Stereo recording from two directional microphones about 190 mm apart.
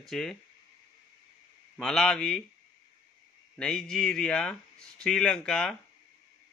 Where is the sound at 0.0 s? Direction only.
Centre (ahead or behind).